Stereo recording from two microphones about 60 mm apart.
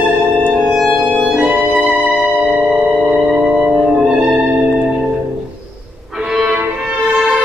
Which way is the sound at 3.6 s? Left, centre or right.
Centre.